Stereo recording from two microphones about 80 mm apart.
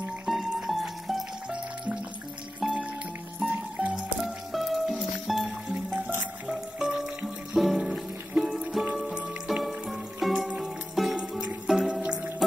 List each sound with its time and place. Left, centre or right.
0.3 s music: centre
2.6 s music: centre
3.4 s music: centre
3.9 s music: centre